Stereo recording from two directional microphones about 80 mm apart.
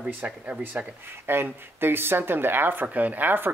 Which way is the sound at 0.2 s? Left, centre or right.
Right.